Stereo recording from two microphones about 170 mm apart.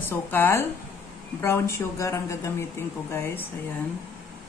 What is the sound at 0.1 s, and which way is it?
Speech, 15° left (ahead or behind).